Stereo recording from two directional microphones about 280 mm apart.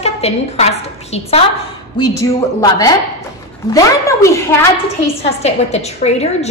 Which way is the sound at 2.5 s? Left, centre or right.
Centre.